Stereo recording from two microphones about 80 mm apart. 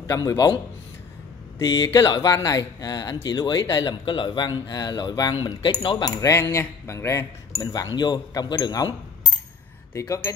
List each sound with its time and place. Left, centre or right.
0.0 s a man's voice: left
2.0 s speech: left
4.0 s speech: left
5.4 s speech: left
6.2 s speech: left
7.6 s speech: left
9.9 s speech: left